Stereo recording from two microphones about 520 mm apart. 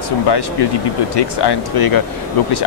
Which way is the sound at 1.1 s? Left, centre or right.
Left.